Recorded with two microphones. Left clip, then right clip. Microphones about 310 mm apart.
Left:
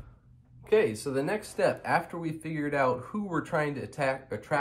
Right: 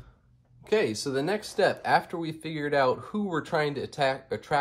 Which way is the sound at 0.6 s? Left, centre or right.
Right.